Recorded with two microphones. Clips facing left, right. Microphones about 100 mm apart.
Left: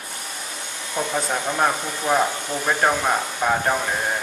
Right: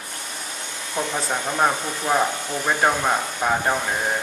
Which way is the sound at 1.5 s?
5° right (ahead or behind).